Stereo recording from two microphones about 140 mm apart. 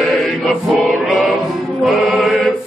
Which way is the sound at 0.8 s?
Centre (ahead or behind).